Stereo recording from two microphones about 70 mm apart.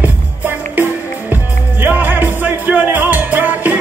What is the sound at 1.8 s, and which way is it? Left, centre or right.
Music, right.